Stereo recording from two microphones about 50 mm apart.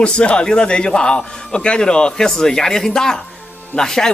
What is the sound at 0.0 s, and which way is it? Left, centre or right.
Speech, centre.